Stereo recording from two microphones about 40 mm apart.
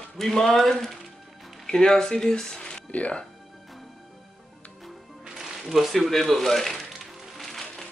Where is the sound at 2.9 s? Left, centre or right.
Left.